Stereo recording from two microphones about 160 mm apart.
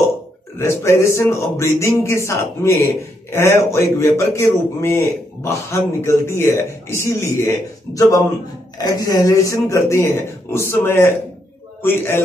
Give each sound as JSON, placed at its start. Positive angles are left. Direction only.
{"t": 0.6, "sound": "speech", "side_deg": 15}